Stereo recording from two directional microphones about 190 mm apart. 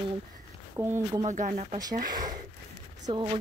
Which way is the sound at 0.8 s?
15° right (ahead or behind).